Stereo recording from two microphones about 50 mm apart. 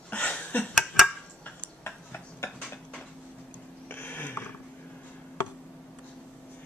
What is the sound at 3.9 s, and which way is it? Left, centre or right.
Mechanisms, left.